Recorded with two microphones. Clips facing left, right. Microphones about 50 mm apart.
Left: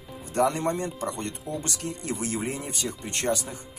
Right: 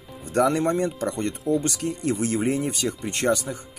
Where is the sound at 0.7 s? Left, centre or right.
Right.